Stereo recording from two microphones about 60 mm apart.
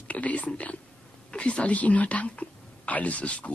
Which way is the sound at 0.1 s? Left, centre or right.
Left.